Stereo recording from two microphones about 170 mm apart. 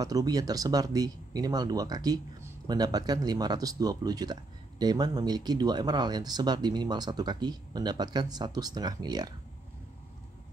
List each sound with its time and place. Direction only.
0.0 s speech: 20° right (ahead or behind)